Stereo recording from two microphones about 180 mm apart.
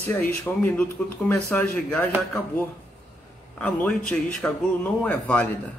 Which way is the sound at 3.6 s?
5° left (ahead or behind).